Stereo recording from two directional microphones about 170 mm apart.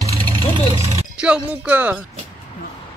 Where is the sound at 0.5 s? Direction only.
40° right (ahead or behind).